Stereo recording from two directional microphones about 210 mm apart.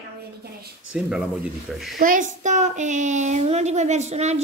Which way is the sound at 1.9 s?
40° right (ahead or behind).